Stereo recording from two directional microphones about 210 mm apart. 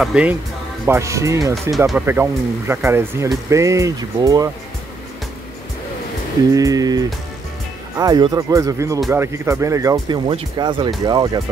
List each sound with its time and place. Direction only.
0.0 s speech: 5° right (ahead or behind)
6.5 s speech: 15° right (ahead or behind)